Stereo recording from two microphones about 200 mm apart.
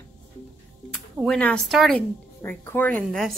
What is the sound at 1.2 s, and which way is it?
Speech, 5° left (ahead or behind).